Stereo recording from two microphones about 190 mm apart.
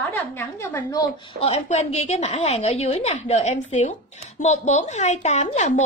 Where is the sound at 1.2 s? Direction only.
30° left (ahead or behind).